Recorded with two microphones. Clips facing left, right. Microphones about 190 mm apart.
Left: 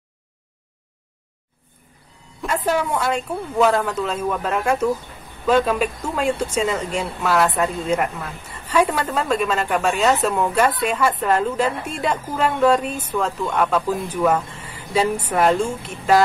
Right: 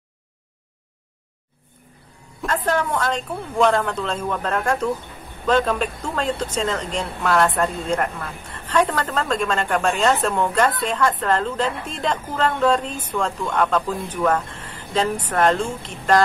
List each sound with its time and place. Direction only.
2.4 s speech: 10° left (ahead or behind)